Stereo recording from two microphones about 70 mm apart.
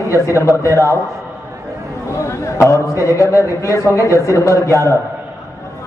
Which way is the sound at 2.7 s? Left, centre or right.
Left.